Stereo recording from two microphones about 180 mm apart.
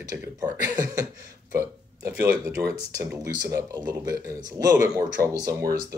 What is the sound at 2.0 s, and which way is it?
Speech, 65° right (ahead or behind).